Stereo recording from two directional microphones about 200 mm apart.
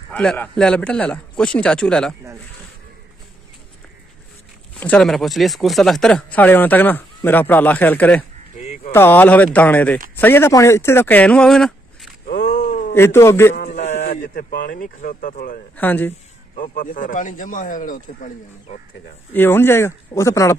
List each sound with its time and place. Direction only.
0.1 s speech: 5° left (ahead or behind)
4.7 s speech: 5° left (ahead or behind)
8.5 s a sound: 35° left (ahead or behind)
8.9 s speech: 10° left (ahead or behind)
12.3 s a sound: 45° left (ahead or behind)
12.9 s speech: 10° left (ahead or behind)
13.6 s a sound: 35° left (ahead or behind)
14.3 s speech: 45° left (ahead or behind)
15.7 s speech: 10° left (ahead or behind)
16.1 s a man's voice: 40° left (ahead or behind)
19.3 s speech: 10° left (ahead or behind)